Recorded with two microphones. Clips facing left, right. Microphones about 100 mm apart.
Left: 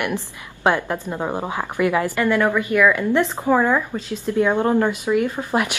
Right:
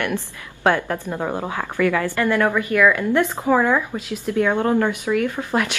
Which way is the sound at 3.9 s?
10° right (ahead or behind).